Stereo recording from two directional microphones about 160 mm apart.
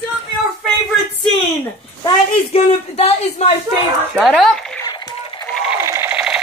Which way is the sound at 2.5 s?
40° left (ahead or behind).